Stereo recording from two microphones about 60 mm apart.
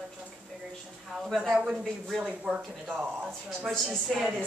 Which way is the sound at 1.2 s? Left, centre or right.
Centre.